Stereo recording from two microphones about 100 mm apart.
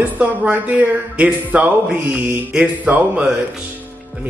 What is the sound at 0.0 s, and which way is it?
Speech, 15° right (ahead or behind).